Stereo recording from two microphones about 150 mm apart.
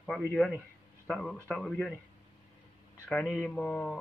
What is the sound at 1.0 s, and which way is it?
Speech, 5° left (ahead or behind).